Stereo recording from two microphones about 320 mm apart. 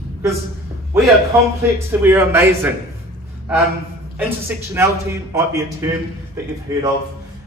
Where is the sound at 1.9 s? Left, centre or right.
Centre.